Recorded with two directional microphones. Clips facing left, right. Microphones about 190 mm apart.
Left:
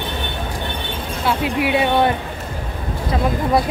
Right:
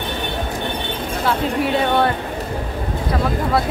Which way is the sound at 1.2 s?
10° left (ahead or behind).